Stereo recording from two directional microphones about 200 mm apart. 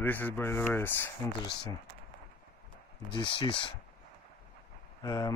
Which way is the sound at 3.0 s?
25° left (ahead or behind).